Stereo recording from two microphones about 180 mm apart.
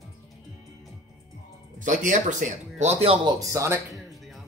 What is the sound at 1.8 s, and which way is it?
Speech, 45° right (ahead or behind).